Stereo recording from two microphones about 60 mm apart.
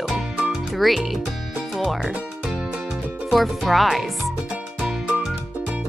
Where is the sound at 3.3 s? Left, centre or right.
Centre.